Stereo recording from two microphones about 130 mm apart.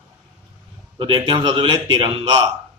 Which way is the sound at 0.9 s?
40° right (ahead or behind).